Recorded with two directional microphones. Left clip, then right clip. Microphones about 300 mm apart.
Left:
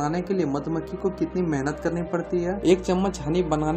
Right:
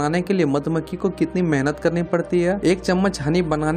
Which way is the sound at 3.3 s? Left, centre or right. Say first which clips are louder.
Right 1 dB; right.